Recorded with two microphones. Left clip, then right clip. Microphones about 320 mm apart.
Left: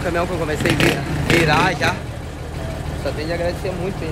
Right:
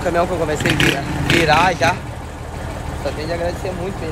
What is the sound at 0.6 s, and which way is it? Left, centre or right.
Speech, left.